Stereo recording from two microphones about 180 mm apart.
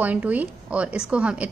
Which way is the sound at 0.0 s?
10° right (ahead or behind).